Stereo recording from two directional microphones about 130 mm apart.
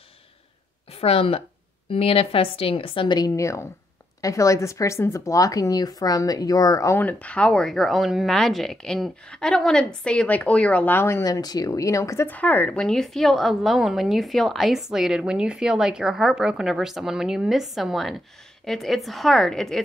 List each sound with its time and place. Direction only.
0.9 s a woman's voice: 50° left (ahead or behind)
3.3 s a woman's voice: 25° left (ahead or behind)
12.4 s a woman's voice: 10° left (ahead or behind)